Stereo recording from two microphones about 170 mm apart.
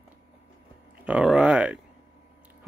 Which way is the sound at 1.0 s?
5° right (ahead or behind).